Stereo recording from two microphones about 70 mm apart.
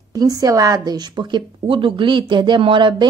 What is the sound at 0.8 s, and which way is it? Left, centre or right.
A woman's voice, right.